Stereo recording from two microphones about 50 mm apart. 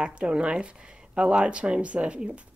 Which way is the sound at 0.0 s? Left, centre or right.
Right.